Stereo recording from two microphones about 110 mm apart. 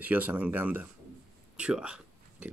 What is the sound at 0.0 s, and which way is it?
Speech, 15° right (ahead or behind).